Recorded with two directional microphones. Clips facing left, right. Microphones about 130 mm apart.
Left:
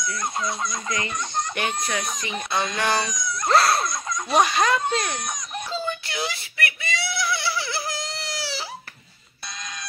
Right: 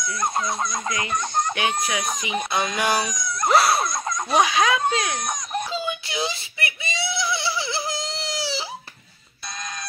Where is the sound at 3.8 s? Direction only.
50° right (ahead or behind).